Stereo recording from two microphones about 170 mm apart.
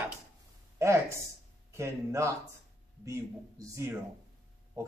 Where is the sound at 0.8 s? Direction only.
15° right (ahead or behind).